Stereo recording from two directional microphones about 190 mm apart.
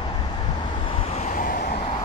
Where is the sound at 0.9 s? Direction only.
30° left (ahead or behind).